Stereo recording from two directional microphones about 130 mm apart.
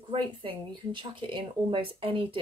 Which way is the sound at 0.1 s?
40° right (ahead or behind).